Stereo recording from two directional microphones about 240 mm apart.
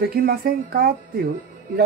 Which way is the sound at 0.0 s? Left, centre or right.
Right.